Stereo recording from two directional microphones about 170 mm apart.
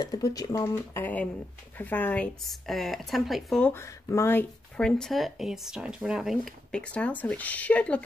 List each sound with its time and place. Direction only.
0.0 s speech: 20° left (ahead or behind); by 3.7 s centre (ahead or behind)
3.7 s speech: 15° left (ahead or behind)